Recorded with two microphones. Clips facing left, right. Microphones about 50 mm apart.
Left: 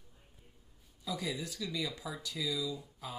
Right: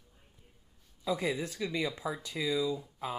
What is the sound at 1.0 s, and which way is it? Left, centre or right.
Speech, right.